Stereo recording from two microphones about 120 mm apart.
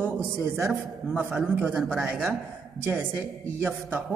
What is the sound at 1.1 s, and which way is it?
Speech, 15° right (ahead or behind).